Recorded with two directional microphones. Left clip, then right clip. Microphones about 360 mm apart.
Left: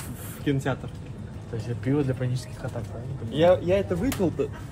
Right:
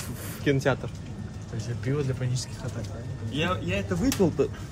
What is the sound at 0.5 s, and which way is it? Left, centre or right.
Speech, right.